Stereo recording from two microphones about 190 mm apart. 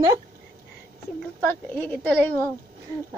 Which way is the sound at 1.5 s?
10° left (ahead or behind).